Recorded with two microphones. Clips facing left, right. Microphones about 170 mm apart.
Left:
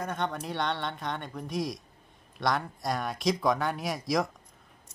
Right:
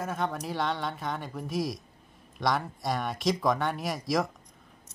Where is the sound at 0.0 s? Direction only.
Centre (ahead or behind).